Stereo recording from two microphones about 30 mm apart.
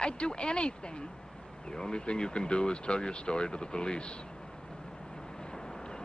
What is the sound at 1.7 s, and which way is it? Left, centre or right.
Speech, left.